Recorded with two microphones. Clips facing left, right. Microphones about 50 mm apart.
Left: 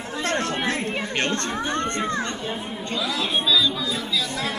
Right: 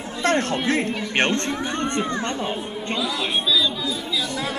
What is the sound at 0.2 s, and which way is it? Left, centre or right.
Speech, right.